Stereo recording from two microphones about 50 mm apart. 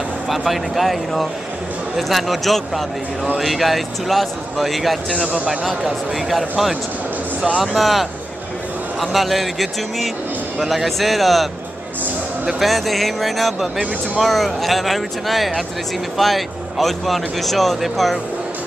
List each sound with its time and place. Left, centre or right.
0.3 s speech: centre
6.1 s speech: centre
7.6 s speech: centre
12.5 s speech: centre